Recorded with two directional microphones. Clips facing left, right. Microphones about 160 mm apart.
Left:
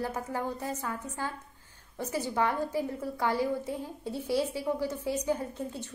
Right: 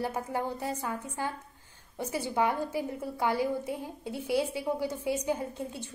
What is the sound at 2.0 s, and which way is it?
A woman's voice, 10° right (ahead or behind).